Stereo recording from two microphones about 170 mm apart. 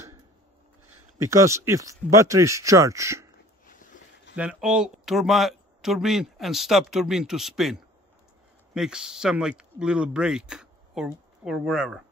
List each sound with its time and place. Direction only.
1.1 s speech: 15° right (ahead or behind)
3.6 s a sound: 50° left (ahead or behind)
4.4 s speech: 5° right (ahead or behind)